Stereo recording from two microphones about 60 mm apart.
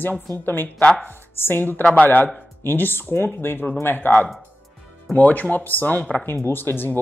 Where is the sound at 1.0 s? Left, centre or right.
Left.